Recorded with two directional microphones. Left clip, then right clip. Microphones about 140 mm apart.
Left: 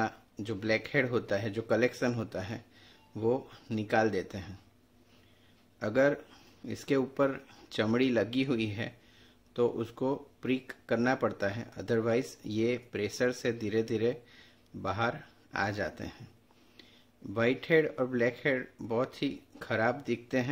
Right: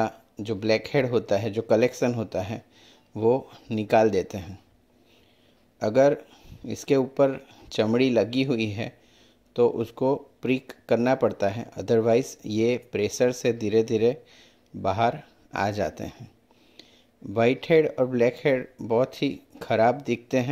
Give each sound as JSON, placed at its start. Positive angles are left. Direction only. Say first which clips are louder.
{"t": 0.0, "sound": "speech", "louder": "right 6 dB", "side_deg": -25}
{"t": 3.7, "sound": "speech", "louder": "right 8 dB", "side_deg": -35}
{"t": 5.8, "sound": "speech", "louder": "right 7 dB", "side_deg": -30}
{"t": 17.3, "sound": "speech", "louder": "right 7 dB", "side_deg": -30}